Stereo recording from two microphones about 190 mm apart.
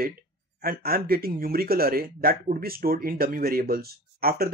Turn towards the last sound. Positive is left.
turn(degrees=-55)  # may be behind; listen again after turning